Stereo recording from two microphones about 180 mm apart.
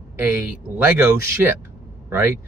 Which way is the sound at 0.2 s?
10° right (ahead or behind).